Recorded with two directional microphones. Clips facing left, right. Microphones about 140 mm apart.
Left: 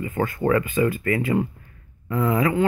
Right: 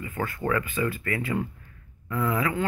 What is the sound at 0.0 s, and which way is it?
Speech, 25° left (ahead or behind).